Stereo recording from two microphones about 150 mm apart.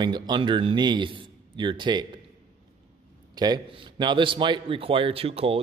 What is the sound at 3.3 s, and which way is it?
A man's voice, 25° right (ahead or behind).